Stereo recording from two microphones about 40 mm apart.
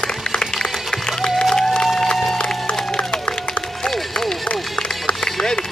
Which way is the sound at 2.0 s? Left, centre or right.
Centre.